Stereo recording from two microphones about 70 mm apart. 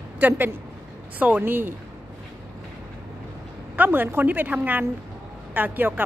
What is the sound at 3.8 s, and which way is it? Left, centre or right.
A woman's voice, right.